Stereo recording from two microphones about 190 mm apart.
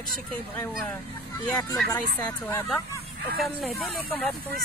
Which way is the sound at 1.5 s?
15° left (ahead or behind).